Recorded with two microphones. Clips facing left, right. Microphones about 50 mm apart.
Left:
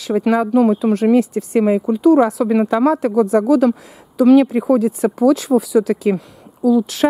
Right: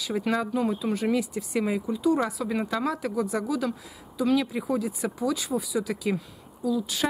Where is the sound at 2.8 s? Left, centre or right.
Left.